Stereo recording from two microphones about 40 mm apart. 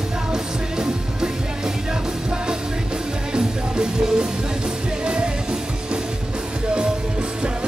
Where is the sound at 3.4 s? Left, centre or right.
Centre.